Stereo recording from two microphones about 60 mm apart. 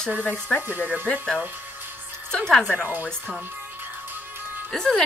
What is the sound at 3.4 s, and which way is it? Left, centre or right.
Music, right.